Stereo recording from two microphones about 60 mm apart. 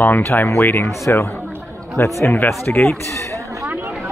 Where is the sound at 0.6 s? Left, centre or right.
Left.